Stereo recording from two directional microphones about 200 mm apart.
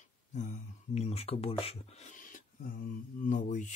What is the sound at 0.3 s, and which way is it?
Speech, 35° left (ahead or behind).